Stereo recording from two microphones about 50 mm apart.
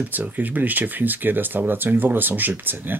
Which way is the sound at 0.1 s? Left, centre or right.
Right.